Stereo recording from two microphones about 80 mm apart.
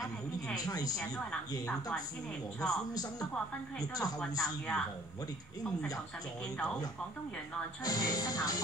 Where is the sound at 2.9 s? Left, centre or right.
Left.